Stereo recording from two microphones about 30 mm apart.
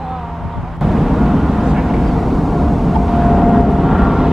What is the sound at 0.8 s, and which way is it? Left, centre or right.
Vehicle, centre.